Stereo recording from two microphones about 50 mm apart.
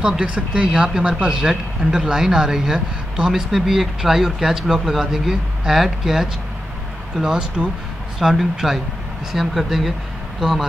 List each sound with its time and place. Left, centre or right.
0.0 s speech: centre